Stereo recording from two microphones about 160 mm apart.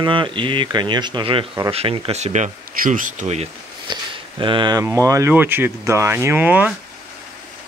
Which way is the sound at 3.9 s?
30° right (ahead or behind).